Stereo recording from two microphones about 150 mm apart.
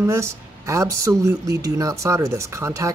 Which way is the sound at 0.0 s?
20° right (ahead or behind).